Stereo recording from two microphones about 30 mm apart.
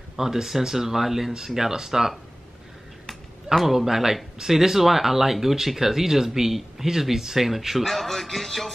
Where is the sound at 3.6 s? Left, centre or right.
Centre.